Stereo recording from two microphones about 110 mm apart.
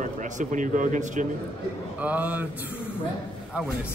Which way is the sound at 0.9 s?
90° right.